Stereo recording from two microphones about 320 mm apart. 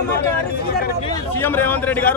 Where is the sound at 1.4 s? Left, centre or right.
Centre.